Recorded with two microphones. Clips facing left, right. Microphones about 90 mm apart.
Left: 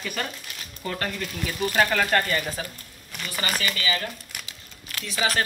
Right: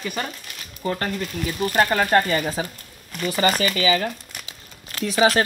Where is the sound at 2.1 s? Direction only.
30° right (ahead or behind).